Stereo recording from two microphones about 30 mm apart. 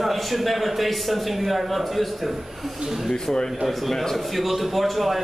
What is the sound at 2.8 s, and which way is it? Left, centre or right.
Speech, centre.